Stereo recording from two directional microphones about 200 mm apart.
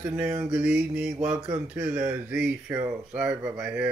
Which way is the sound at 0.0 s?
10° right (ahead or behind).